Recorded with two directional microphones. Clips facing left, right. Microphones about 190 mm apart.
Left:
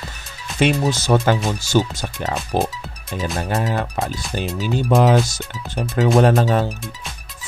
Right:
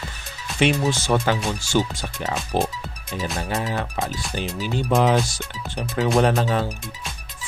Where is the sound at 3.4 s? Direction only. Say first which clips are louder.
Left 5 dB; 50° left (ahead or behind).